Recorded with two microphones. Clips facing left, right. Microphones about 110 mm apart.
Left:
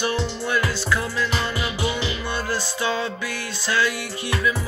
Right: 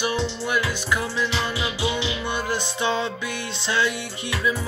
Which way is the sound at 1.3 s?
45° left (ahead or behind).